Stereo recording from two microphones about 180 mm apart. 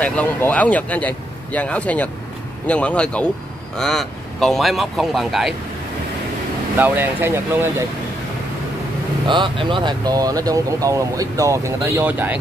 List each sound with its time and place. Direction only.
0.0 s a man's voice: 10° left (ahead or behind)
6.8 s speech: 10° right (ahead or behind)
9.3 s speech: 25° right (ahead or behind); by 12.4 s 10° right (ahead or behind)